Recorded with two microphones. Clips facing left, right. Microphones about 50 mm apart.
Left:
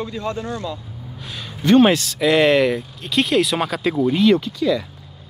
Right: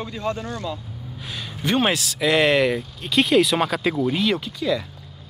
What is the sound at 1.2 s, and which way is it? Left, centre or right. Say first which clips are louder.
Speech: even; centre.